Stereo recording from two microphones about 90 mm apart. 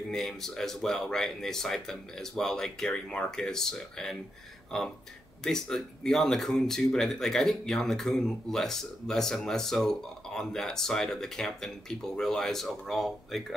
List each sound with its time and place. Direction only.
0.1 s speech: 5° left (ahead or behind)